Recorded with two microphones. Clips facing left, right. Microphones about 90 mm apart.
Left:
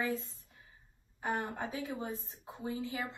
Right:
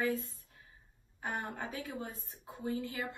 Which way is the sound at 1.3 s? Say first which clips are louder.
Left 2 dB; 20° left (ahead or behind).